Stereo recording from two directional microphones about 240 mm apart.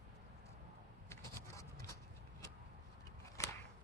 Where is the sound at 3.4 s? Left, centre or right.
Centre.